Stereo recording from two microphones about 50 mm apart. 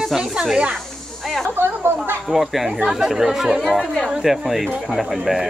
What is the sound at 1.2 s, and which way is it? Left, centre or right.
Snake, centre.